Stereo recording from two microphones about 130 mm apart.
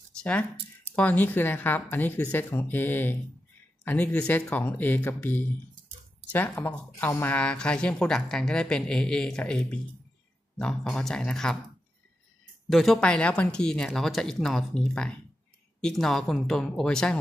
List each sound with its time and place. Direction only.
0.2 s a woman's voice: 10° left (ahead or behind)
12.6 s speech: centre (ahead or behind)